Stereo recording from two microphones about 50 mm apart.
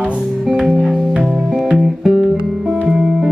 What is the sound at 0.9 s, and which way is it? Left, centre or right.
Organ, centre.